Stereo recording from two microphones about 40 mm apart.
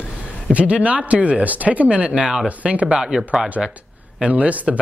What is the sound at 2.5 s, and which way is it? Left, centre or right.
Speech, right.